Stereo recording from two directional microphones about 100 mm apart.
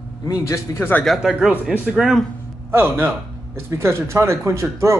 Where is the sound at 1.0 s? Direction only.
Centre (ahead or behind).